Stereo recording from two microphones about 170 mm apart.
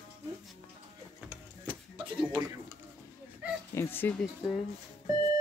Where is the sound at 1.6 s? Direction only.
30° right (ahead or behind).